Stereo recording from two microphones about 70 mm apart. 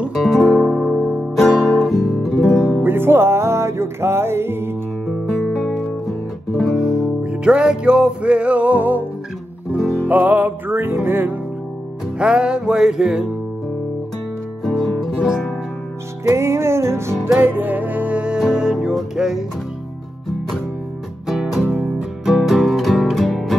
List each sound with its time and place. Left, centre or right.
0.1 s guitar: centre
0.9 s music: centre
2.8 s music: right
5.0 s music: centre
6.8 s music: centre; by 9.0 s right
10.0 s music: right
12.2 s music: centre
14.6 s guitar: centre
16.3 s music: right
17.4 s music: right; by 19.4 s centre
21.3 s music: centre